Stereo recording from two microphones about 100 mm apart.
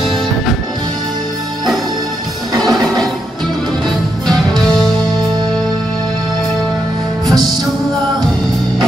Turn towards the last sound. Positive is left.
turn(degrees=-40)  # may be behind; listen again after turning